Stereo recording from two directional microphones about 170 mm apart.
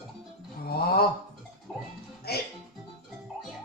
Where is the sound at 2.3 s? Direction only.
65° left (ahead or behind).